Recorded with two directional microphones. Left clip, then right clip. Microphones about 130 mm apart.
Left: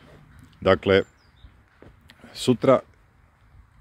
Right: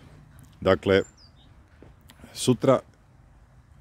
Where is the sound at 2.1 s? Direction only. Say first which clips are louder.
Left 2 dB; 20° right (ahead or behind).